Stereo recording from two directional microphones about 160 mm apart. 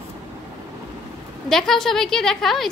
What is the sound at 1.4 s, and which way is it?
A woman's voice, centre (ahead or behind).